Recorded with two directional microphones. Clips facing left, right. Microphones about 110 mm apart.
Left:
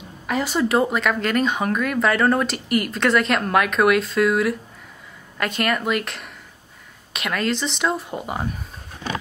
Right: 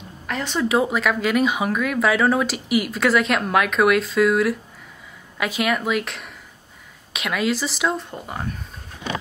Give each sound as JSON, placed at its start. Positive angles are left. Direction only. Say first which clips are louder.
{"t": 0.3, "sound": "speech", "louder": "left 1 dB", "side_deg": 5}